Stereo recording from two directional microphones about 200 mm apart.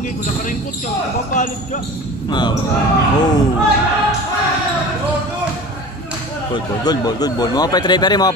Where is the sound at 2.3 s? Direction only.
20° left (ahead or behind).